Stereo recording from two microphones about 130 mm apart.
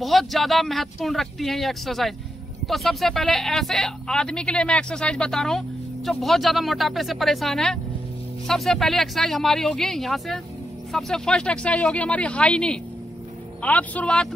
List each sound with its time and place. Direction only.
0.0 s speech: centre (ahead or behind)